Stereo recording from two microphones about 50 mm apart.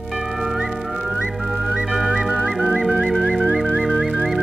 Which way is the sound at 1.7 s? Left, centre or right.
Right.